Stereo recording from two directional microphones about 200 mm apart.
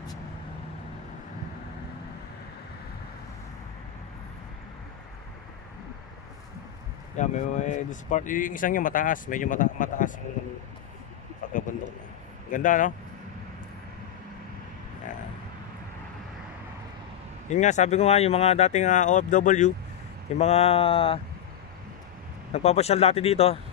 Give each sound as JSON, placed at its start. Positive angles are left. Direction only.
{"t": 7.2, "sound": "speech", "side_deg": 35}
{"t": 11.4, "sound": "a sound", "side_deg": 40}
{"t": 12.4, "sound": "speech", "side_deg": 40}
{"t": 17.5, "sound": "speech", "side_deg": 35}
{"t": 22.5, "sound": "speech", "side_deg": 30}